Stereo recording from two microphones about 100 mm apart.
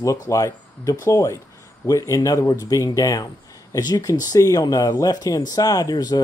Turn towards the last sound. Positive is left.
turn(degrees=40)  # may be behind; listen again after turning